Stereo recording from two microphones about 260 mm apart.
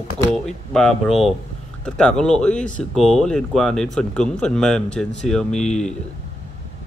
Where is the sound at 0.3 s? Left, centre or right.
Centre.